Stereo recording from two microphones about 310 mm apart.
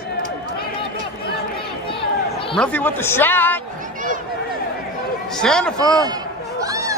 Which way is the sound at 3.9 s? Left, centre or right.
Right.